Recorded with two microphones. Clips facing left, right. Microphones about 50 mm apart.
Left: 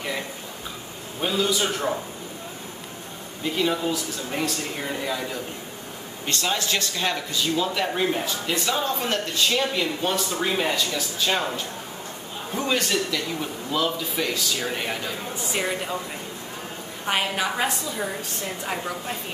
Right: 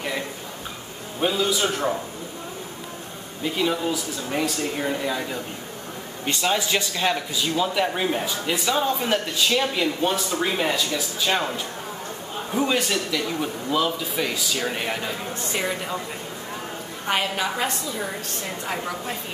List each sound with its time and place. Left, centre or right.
1.2 s a man's voice: centre
3.5 s a man's voice: centre
17.1 s a woman's voice: centre